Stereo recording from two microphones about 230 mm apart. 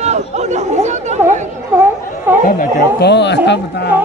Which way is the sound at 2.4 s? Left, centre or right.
Left.